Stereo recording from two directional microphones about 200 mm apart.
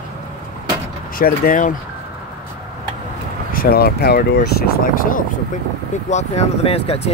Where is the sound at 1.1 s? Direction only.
45° left (ahead or behind).